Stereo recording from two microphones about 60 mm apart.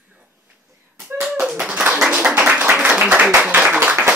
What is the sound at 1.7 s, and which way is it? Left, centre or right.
Clapping, right.